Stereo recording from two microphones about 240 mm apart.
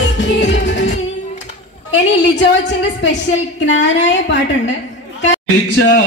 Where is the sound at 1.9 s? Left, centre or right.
Left.